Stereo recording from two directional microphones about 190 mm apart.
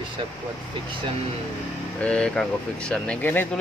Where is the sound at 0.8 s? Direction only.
25° right (ahead or behind).